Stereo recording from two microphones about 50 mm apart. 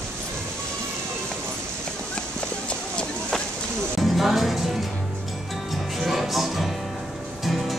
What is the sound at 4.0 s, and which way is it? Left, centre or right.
Music, centre.